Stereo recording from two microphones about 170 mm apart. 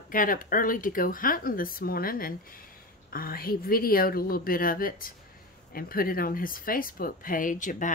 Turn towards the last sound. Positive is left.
turn(degrees=50)  # may be behind; listen again after turning